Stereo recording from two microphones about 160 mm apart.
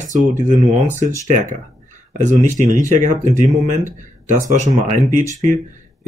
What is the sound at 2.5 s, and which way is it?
Speech, 50° right (ahead or behind).